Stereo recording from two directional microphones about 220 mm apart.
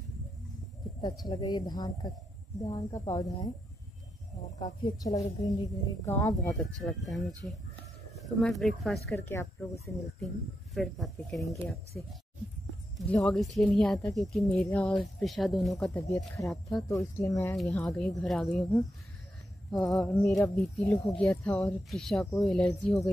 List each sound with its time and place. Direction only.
1.0 s speech: 20° left (ahead or behind)
4.6 s speech: 20° left (ahead or behind); by 9.0 s centre (ahead or behind)
9.1 s speech: 10° left (ahead or behind)
16.3 s speech: 15° left (ahead or behind)
17.6 s speech: centre (ahead or behind)
19.7 s speech: centre (ahead or behind)